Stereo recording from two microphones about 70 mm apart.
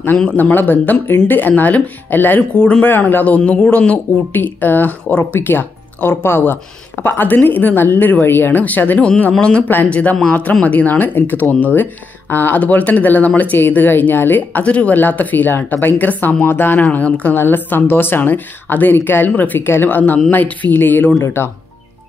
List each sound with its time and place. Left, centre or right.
0.4 s speech: left
2.6 s speech: centre
2.9 s speech: left